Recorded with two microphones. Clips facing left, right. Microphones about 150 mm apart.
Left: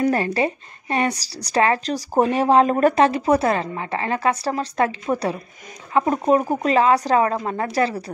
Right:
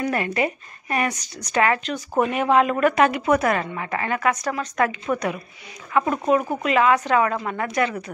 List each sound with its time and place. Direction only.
0.0 s a woman's voice: 30° left (ahead or behind)